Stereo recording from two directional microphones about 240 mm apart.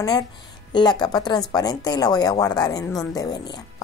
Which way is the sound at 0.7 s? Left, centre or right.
Centre.